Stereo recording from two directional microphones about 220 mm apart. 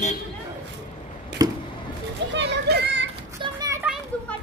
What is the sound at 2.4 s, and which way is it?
Children playing, 50° right (ahead or behind).